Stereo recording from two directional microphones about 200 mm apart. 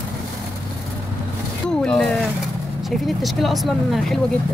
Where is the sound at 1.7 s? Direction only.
5° left (ahead or behind).